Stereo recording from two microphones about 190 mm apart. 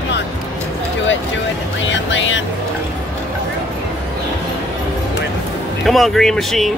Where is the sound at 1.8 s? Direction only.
80° left.